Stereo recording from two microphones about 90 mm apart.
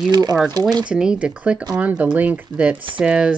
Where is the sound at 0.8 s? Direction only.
10° right (ahead or behind).